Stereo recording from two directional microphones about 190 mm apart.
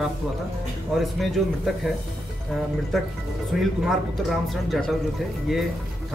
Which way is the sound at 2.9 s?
Centre (ahead or behind).